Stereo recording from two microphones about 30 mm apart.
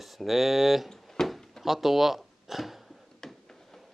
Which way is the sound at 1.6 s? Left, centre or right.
Centre.